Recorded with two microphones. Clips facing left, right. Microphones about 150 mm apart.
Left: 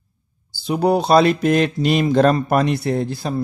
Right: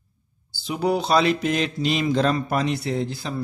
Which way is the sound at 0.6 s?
45° left (ahead or behind).